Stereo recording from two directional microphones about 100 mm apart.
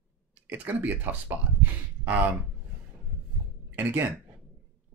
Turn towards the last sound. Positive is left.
turn(degrees=-20)  # may be behind; listen again after turning